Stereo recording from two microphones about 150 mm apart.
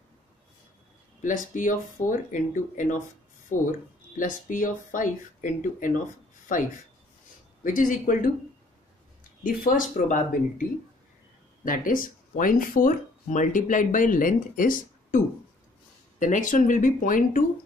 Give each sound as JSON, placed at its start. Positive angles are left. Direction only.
{"t": 1.2, "sound": "speech", "side_deg": 60}
{"t": 7.6, "sound": "speech", "side_deg": 60}
{"t": 9.4, "sound": "speech", "side_deg": 60}
{"t": 11.6, "sound": "speech", "side_deg": 65}